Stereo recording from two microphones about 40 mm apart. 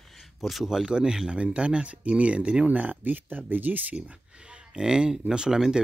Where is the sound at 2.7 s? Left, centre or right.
Right.